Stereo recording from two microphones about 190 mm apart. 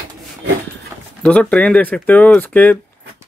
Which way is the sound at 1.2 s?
5° left (ahead or behind).